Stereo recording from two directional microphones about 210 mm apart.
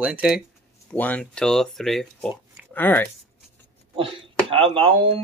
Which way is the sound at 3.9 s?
25° right (ahead or behind).